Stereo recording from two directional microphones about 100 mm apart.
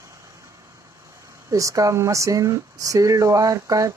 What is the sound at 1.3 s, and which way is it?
Speech, 35° right (ahead or behind).